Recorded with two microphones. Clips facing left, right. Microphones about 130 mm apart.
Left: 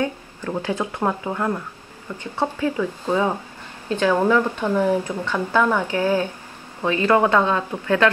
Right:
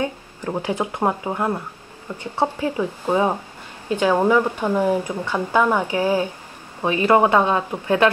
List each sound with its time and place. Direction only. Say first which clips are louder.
0.0 s speech: even; 20° right (ahead or behind)